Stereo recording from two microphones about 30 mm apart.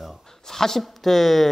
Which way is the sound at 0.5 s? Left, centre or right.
Centre.